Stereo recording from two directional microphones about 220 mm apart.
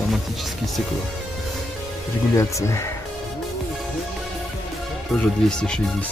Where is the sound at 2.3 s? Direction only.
15° left (ahead or behind).